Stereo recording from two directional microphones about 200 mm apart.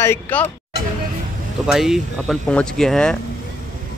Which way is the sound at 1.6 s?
Centre (ahead or behind).